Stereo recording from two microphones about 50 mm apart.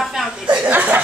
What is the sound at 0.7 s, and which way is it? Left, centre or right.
Speech, right.